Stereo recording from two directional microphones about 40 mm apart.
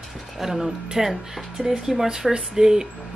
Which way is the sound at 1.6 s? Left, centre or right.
Right.